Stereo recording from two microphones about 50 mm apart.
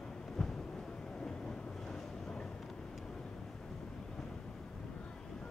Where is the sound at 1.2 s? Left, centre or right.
Centre.